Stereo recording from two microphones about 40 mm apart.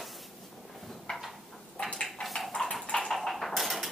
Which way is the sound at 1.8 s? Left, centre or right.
Centre.